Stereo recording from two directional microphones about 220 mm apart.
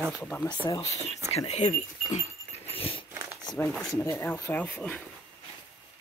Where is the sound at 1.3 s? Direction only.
30° left (ahead or behind).